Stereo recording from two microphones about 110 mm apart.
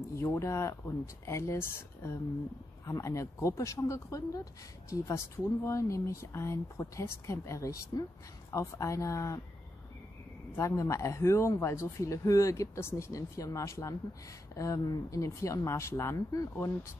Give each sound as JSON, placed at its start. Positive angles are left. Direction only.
{"t": 0.1, "sound": "speech", "side_deg": 25}
{"t": 10.5, "sound": "speech", "side_deg": 30}